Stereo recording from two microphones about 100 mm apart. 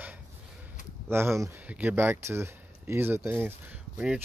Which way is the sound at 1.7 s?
15° right (ahead or behind).